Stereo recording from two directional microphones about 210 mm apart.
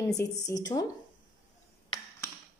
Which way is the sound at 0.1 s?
15° left (ahead or behind).